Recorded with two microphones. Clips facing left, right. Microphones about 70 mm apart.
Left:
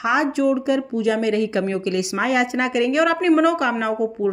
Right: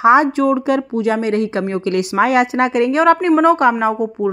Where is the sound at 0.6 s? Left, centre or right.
Right.